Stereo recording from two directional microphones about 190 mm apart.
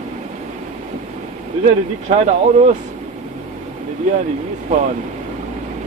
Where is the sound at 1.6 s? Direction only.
35° right (ahead or behind).